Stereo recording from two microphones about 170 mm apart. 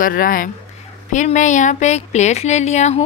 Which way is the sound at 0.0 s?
55° left (ahead or behind).